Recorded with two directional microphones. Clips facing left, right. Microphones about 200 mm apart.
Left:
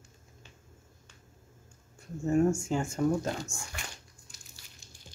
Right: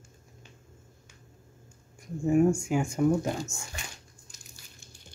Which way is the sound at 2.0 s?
15° right (ahead or behind).